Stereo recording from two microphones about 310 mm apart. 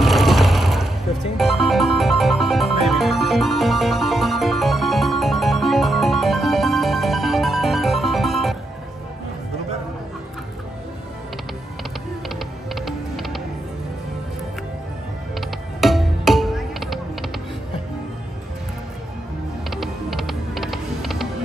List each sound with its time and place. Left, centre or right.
0.0 s mechanisms: centre
1.4 s music: centre
12.7 s music: centre
15.3 s music: centre
19.7 s music: centre